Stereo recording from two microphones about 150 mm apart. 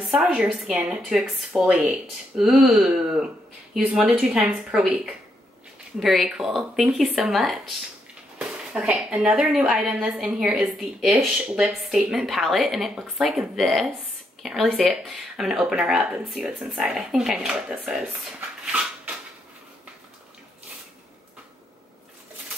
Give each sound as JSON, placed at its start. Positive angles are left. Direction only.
{"t": 0.0, "sound": "speech", "side_deg": -5}
{"t": 18.7, "sound": "dog", "side_deg": -5}